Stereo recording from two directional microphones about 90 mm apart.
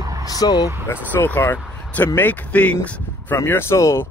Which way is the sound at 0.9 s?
25° left (ahead or behind).